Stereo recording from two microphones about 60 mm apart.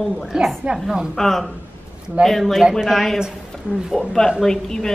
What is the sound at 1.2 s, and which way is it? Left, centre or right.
A woman's voice, centre.